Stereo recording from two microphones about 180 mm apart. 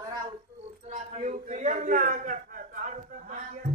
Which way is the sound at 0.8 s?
40° right (ahead or behind).